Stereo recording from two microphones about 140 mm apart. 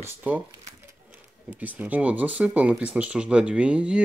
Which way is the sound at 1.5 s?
10° right (ahead or behind).